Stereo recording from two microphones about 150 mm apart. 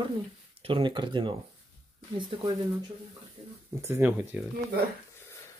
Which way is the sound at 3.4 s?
40° right (ahead or behind).